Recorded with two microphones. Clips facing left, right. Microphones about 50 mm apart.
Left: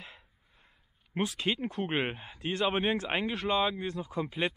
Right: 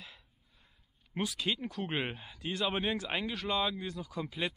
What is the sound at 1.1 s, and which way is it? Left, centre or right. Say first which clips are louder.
Speech: left 3 dB; left.